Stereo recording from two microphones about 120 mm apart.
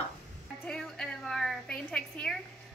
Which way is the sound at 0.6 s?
5° left (ahead or behind).